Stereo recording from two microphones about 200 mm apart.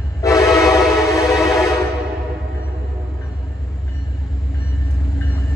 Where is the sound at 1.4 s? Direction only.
15° left (ahead or behind).